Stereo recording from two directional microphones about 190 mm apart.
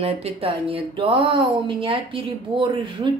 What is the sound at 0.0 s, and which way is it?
Speech, 30° right (ahead or behind).